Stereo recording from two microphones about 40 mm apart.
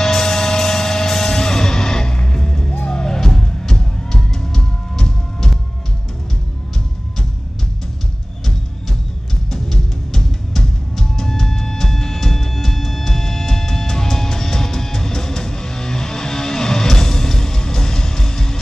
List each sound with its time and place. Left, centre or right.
0.0 s music: centre
9.5 s music: centre